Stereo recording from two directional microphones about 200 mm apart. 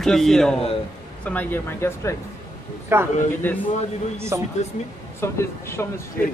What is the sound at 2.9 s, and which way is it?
Speech, 10° right (ahead or behind).